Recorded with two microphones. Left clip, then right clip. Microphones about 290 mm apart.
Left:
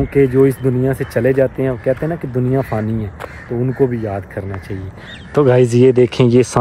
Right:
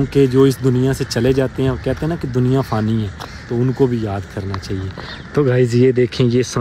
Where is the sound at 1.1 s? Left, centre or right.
Centre.